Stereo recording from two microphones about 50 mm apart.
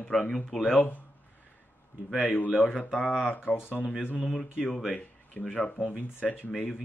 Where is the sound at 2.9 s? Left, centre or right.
Centre.